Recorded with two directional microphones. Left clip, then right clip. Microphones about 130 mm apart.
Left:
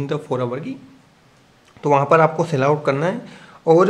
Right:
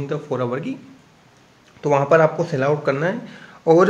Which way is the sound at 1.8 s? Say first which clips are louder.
Left 1 dB; 20° left (ahead or behind).